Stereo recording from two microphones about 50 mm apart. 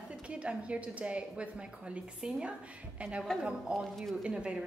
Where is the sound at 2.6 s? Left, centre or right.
Right.